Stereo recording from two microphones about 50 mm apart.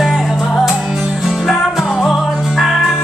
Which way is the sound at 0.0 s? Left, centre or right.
Centre.